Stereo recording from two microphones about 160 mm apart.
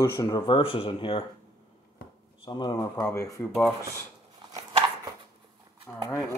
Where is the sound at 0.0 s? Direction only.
20° left (ahead or behind).